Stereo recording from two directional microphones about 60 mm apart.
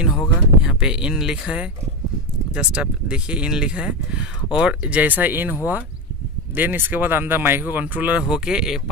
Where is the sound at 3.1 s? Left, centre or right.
Centre.